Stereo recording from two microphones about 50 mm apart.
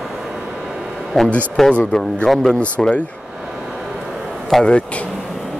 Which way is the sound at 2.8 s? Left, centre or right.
Left.